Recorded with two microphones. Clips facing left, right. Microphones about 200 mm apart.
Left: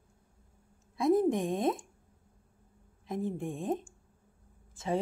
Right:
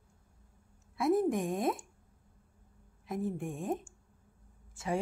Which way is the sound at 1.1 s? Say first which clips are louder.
Left 2 dB; 30° left (ahead or behind).